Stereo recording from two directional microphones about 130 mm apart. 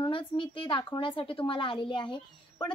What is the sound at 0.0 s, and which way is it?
A woman's voice, 40° left (ahead or behind).